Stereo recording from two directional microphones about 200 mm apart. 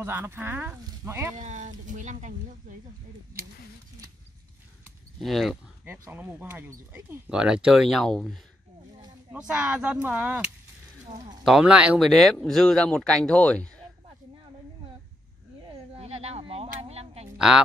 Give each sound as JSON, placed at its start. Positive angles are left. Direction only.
{"t": 0.0, "sound": "speech", "side_deg": -10}
{"t": 1.3, "sound": "speech", "side_deg": -40}
{"t": 5.2, "sound": "speech", "side_deg": 0}
{"t": 5.9, "sound": "speech", "side_deg": -10}
{"t": 11.4, "sound": "speech", "side_deg": -5}
{"t": 16.0, "sound": "a sound", "side_deg": -30}